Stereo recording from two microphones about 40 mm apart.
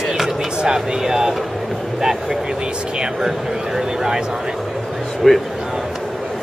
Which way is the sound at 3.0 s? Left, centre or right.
Centre.